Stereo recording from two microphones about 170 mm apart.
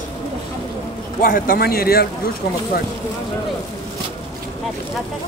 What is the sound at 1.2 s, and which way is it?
Speech, 55° left (ahead or behind).